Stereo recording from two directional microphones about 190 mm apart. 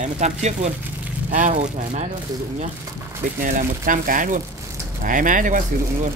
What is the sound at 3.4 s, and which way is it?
Speech, 45° right (ahead or behind).